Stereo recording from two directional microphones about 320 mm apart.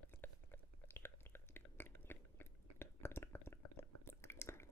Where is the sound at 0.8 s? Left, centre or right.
Centre.